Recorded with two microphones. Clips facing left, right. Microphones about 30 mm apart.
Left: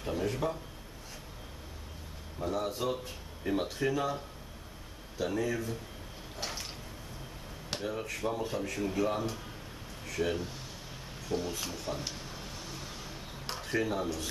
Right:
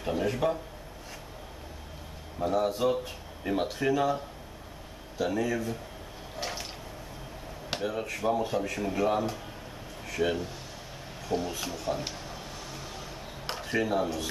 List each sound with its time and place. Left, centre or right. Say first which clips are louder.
0.0 s speech: right 5 dB; centre
2.4 s speech: right 6 dB; centre
5.2 s speech: right 3 dB; centre
6.3 s a sound: right 4 dB; centre
7.7 s speech: right 4 dB; centre
12.1 s a sound: right 3 dB; centre
13.5 s speech: right 3 dB; centre